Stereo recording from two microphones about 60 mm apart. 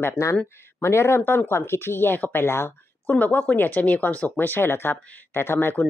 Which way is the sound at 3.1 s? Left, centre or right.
Left.